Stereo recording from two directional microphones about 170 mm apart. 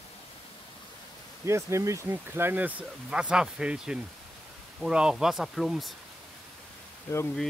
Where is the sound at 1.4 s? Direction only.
15° right (ahead or behind); by 5.9 s centre (ahead or behind).